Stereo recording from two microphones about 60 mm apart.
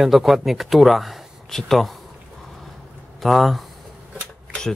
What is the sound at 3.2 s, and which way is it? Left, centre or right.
Speech, centre.